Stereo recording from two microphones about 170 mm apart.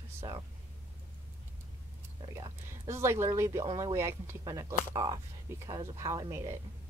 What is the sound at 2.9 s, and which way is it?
Speech, 15° right (ahead or behind).